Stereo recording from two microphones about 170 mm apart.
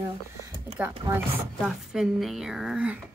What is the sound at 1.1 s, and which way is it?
Speech, 25° right (ahead or behind).